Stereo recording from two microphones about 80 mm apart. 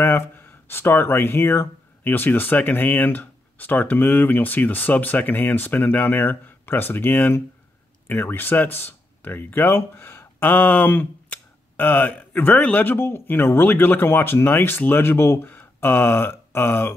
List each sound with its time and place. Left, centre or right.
0.0 s speech: left